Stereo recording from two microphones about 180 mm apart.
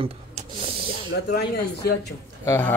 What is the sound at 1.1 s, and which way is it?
Speech, 70° left (ahead or behind).